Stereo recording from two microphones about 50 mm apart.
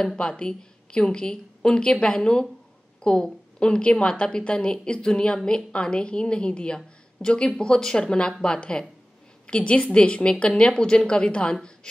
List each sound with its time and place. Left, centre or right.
0.2 s a woman's voice: centre